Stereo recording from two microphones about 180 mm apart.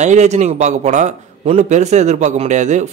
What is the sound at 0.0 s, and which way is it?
A man's voice, 40° right (ahead or behind).